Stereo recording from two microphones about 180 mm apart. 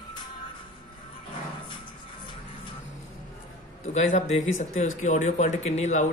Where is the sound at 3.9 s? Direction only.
40° left (ahead or behind).